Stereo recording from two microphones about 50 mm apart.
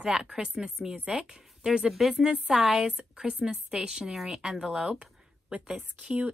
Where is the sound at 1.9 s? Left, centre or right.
Centre.